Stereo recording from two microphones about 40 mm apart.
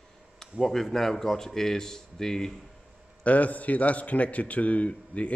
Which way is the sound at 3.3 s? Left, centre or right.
Left.